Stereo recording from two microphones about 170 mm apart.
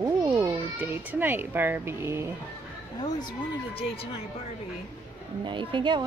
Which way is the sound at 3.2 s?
30° left (ahead or behind).